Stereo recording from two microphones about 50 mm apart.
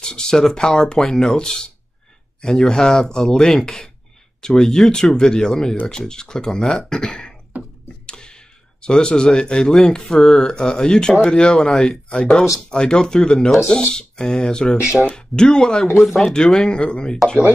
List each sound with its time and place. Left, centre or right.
0.0 s speech: centre
7.5 s a sound: right
8.1 s speech: centre